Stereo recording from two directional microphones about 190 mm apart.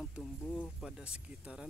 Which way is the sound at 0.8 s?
5° right (ahead or behind).